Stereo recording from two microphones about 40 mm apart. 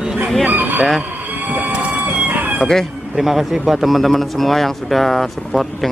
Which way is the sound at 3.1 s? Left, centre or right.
Centre.